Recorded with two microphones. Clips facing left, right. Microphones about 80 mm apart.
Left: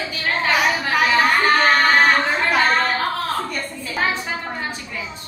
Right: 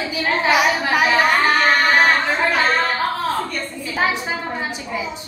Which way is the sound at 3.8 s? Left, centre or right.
Centre.